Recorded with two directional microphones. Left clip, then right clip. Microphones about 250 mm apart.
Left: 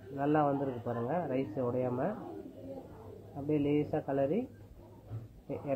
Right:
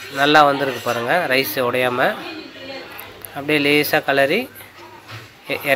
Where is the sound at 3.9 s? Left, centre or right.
Right.